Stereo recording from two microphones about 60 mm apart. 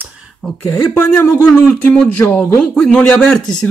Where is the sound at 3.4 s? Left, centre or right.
Centre.